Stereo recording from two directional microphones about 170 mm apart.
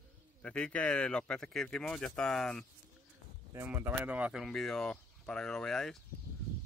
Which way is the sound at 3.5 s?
15° right (ahead or behind).